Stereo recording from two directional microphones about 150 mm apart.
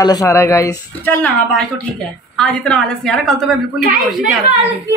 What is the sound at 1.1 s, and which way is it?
A woman's voice, 10° left (ahead or behind).